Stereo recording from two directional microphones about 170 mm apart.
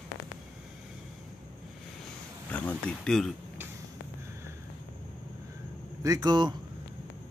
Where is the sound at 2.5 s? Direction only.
10° left (ahead or behind).